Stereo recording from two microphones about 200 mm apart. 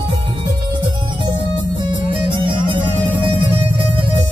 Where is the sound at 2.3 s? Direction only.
25° right (ahead or behind).